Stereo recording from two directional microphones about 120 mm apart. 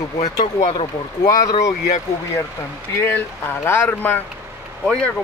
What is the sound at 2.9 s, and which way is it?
Speech, 20° left (ahead or behind).